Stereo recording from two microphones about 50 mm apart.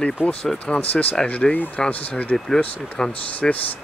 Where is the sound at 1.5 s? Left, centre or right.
Left.